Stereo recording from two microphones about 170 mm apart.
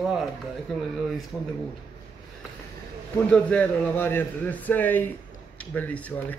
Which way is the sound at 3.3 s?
10° left (ahead or behind).